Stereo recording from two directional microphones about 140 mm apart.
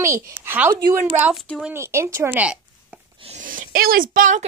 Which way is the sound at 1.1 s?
10° right (ahead or behind).